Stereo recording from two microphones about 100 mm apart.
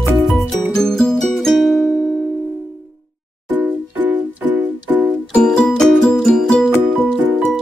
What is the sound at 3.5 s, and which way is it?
Music, 15° right (ahead or behind).